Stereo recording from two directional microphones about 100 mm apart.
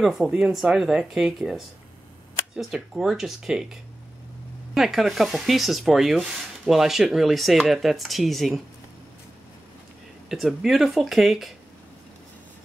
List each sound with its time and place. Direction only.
0.0 s speech: 5° right (ahead or behind)
4.7 s speech: centre (ahead or behind)
10.3 s speech: centre (ahead or behind)